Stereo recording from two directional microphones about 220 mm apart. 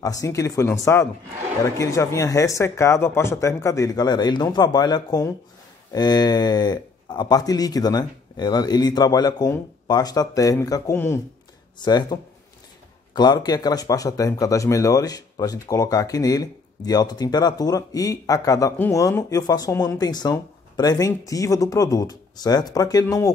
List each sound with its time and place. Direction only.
0.0 s speech: 15° left (ahead or behind)